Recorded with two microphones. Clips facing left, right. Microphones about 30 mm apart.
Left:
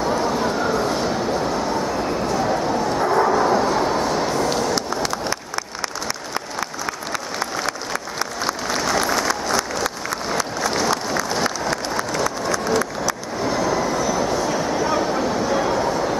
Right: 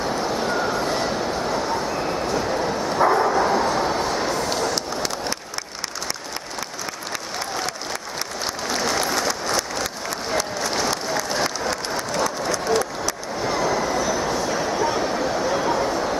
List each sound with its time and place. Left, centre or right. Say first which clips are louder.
0.0 s a sound: left 3 dB; centre
2.4 s bow-wow: left 3 dB; centre
3.2 s vehicle: left 2 dB; centre
7.1 s applause: left 3 dB; centre